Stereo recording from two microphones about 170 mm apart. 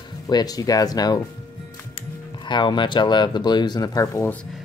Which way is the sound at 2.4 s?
25° left (ahead or behind).